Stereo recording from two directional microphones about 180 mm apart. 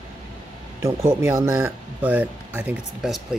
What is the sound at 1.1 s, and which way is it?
Speech, 15° right (ahead or behind).